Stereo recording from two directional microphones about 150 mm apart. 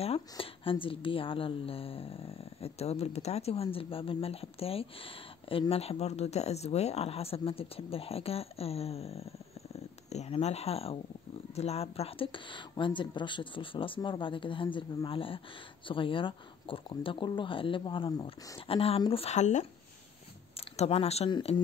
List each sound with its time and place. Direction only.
0.0 s a woman's voice: 40° left (ahead or behind)
20.7 s a woman's voice: 45° left (ahead or behind)